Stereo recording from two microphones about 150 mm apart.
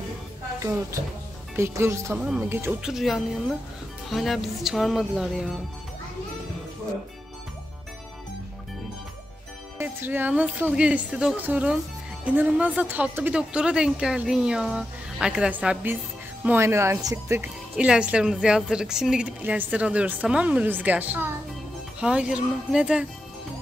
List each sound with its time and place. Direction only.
1.6 s a woman's voice: 20° right (ahead or behind)
2.8 s speech: centre (ahead or behind)
9.8 s a woman's voice: 15° right (ahead or behind)
17.4 s a woman's voice: 5° right (ahead or behind)